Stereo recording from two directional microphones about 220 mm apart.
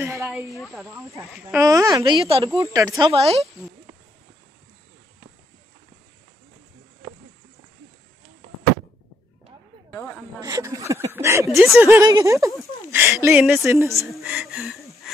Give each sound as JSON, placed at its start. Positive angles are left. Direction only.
{"t": 0.0, "sound": "speech", "side_deg": -10}
{"t": 0.5, "sound": "speech", "side_deg": 0}
{"t": 1.3, "sound": "speech", "side_deg": -10}
{"t": 9.8, "sound": "snake", "side_deg": 10}
{"t": 10.4, "sound": "speech", "side_deg": -15}
{"t": 13.7, "sound": "speech", "side_deg": -10}
{"t": 14.2, "sound": "speech", "side_deg": 0}